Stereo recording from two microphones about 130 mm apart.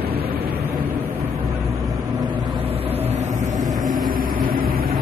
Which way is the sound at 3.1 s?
65° right (ahead or behind).